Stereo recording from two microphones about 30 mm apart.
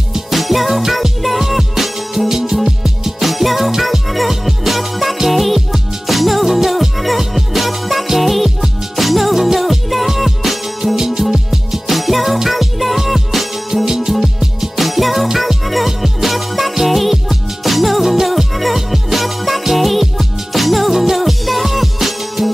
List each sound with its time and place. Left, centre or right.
0.3 s music: centre
2.2 s music: centre
13.8 s music: centre
14.8 s music: centre